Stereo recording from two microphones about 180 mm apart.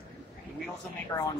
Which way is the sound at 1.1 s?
15° left (ahead or behind).